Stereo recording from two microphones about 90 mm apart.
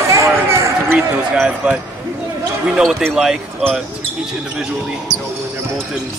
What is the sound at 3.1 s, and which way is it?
Speech, 5° right (ahead or behind).